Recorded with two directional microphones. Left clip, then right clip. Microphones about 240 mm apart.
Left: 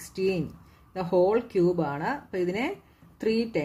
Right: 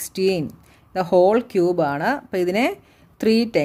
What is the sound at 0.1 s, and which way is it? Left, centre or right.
Speech, right.